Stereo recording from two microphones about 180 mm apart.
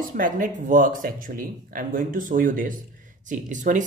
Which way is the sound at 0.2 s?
45° right (ahead or behind).